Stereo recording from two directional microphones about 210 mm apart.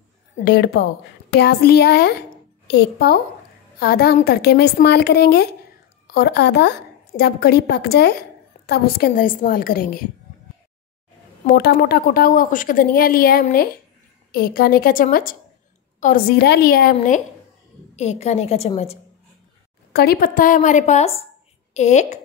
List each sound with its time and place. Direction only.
0.5 s a woman's voice: 50° left (ahead or behind)
11.4 s a woman's voice: 45° left (ahead or behind); by 18.9 s 30° left (ahead or behind)
19.9 s a woman's voice: 45° left (ahead or behind)